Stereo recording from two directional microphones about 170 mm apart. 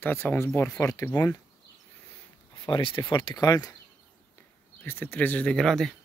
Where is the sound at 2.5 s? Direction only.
25° left (ahead or behind).